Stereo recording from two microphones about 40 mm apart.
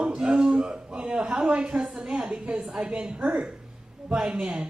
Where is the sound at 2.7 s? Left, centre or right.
Centre.